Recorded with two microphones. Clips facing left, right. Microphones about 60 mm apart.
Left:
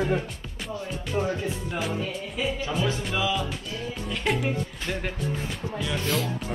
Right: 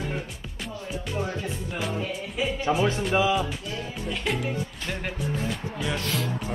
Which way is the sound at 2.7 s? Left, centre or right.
Right.